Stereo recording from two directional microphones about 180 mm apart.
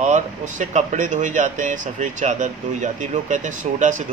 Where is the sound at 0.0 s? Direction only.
40° right (ahead or behind).